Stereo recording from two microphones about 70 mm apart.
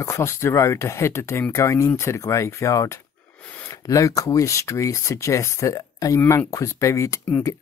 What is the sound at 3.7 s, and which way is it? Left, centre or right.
Speech, left.